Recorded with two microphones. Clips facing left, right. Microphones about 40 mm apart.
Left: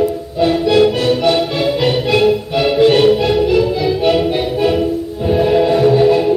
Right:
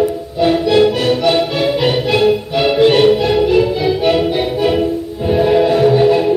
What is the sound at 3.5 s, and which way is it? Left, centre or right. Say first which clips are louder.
Music: right 1 dB; right.